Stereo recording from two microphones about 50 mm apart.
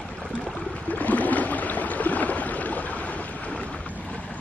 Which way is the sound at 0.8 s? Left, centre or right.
Left.